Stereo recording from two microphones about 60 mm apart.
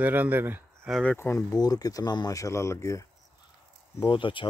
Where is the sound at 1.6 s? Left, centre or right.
Left.